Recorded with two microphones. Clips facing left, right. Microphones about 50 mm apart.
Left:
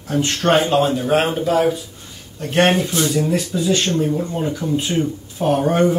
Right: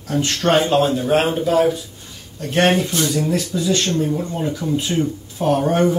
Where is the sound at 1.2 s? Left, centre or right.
Centre.